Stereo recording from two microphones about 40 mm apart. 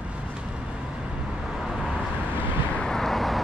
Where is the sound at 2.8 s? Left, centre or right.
Centre.